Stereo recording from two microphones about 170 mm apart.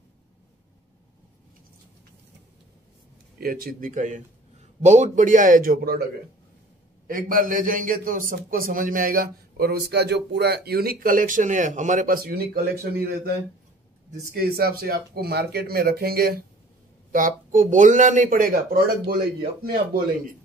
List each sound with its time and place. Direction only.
3.3 s a man's voice: 60° right (ahead or behind)
7.1 s a man's voice: 55° right (ahead or behind)
14.3 s a man's voice: 60° right (ahead or behind)
17.1 s speech: 50° right (ahead or behind)